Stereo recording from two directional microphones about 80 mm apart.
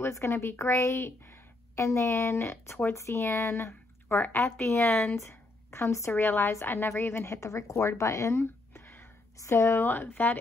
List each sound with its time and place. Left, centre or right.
0.0 s a woman's voice: left
4.8 s speech: centre
5.1 s speech: left